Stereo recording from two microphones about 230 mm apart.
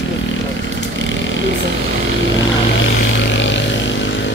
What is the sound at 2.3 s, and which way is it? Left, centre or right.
Vehicle, left.